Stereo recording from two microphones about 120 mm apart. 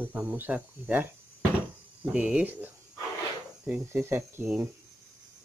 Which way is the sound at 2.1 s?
5° right (ahead or behind).